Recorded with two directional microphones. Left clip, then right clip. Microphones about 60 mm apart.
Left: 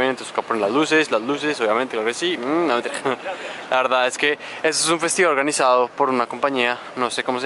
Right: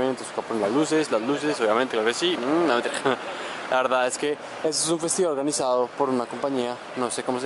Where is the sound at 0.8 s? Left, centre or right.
Left.